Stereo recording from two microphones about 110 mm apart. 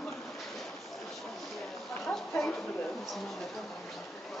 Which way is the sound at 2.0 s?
15° left (ahead or behind).